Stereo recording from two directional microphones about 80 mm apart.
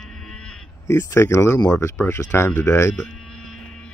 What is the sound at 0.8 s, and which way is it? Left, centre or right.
Speech, left.